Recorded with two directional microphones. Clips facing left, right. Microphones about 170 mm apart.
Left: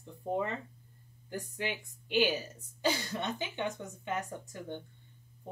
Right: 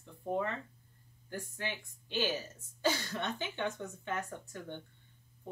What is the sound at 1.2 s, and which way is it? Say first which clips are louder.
Speech: left 3 dB; 15° left (ahead or behind).